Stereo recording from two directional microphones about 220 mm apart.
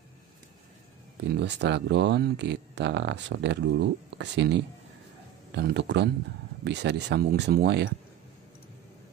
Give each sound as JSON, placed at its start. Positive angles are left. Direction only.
{"t": 1.3, "sound": "speech", "side_deg": -50}